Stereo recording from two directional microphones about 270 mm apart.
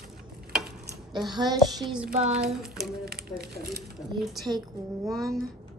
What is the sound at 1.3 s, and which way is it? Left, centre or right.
Speech, centre.